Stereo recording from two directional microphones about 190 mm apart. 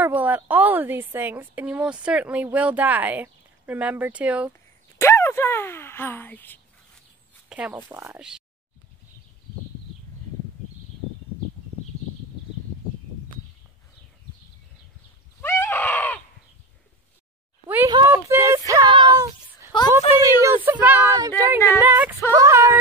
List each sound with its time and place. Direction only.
0.0 s a woman's voice: 10° right (ahead or behind)
4.9 s speech: 15° left (ahead or behind)
7.4 s a woman's voice: 5° right (ahead or behind)
15.4 s a sound: 15° left (ahead or behind)
17.6 s a woman's voice: 10° right (ahead or behind)
21.5 s speech: 15° left (ahead or behind)
21.8 s a woman's voice: 10° right (ahead or behind)